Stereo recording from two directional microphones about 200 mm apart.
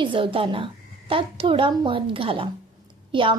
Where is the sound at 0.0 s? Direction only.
25° right (ahead or behind).